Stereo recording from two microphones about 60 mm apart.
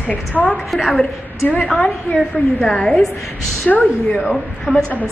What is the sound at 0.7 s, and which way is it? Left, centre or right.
Speech, centre.